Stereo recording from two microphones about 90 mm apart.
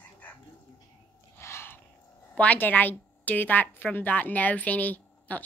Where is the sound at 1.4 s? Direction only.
30° left (ahead or behind).